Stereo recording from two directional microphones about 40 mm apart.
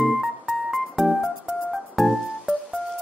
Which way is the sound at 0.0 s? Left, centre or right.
Centre.